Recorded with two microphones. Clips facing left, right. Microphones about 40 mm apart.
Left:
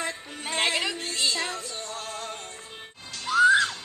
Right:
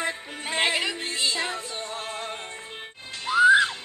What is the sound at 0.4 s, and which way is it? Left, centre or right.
Music, centre.